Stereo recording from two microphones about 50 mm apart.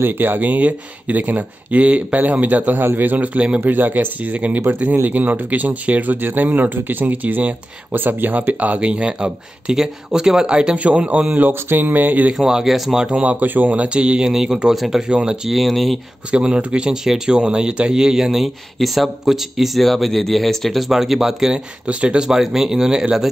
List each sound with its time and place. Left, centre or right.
0.0 s speech: right
3.6 s speech: right
8.8 s speech: centre
11.3 s speech: right
12.4 s speech: centre
13.2 s speech: right
13.8 s speech: right
14.3 s speech: centre
15.0 s speech: centre
15.5 s speech: centre
16.3 s speech: centre
20.9 s speech: centre
21.8 s speech: right
22.4 s speech: centre